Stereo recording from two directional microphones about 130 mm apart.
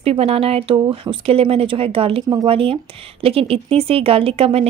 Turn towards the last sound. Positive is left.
turn(degrees=-50)  # may be behind; listen again after turning